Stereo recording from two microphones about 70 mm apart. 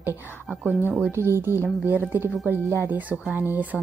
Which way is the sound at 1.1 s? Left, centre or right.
Right.